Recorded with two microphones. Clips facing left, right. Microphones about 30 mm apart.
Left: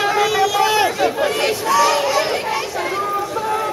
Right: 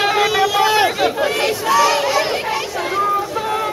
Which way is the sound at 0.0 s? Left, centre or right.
Right.